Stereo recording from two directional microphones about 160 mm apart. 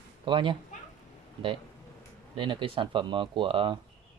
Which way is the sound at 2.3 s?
30° right (ahead or behind).